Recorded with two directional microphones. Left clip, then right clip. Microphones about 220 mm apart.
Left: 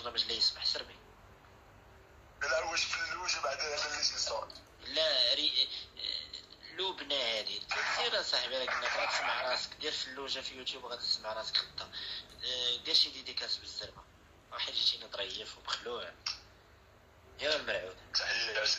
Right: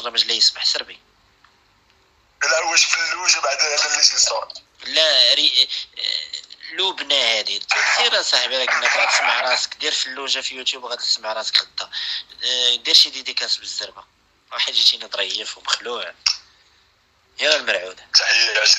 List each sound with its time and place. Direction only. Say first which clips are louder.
0.0 s speech: right 15 dB; 50° right (ahead or behind)
2.3 s speech: right 15 dB; 50° right (ahead or behind)
17.4 s speech: right 15 dB; 50° right (ahead or behind)